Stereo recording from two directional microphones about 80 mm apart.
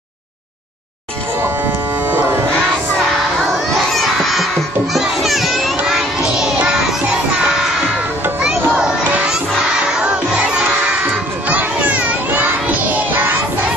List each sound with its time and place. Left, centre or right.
3.9 s children playing: centre
8.4 s children playing: centre
9.3 s crowd: centre
11.4 s children playing: right